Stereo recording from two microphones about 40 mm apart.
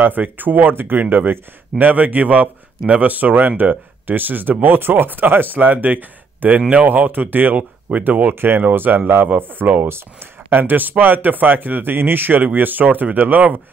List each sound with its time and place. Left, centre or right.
0.0 s speech: right
8.4 s speech: right